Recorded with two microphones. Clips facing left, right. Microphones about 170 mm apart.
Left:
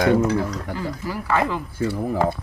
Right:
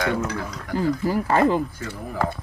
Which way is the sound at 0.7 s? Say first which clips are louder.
Right 6 dB; 45° right (ahead or behind).